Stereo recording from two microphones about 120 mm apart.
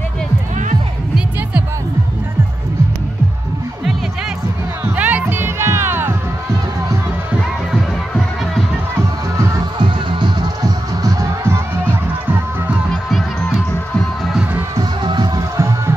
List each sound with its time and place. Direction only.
4.9 s music: 15° right (ahead or behind)
9.4 s music: 35° right (ahead or behind); by 12.7 s 15° right (ahead or behind)
12.9 s music: centre (ahead or behind)
14.8 s music: 40° right (ahead or behind)